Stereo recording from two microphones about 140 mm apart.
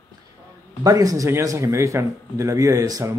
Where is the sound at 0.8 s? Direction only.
25° right (ahead or behind).